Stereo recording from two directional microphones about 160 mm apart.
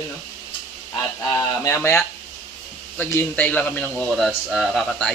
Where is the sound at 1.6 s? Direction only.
15° left (ahead or behind).